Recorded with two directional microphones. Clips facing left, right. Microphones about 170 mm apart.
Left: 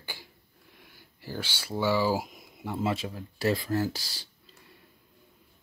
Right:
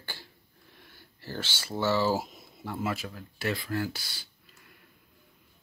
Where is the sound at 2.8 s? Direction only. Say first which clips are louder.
Left 3 dB; 25° left (ahead or behind).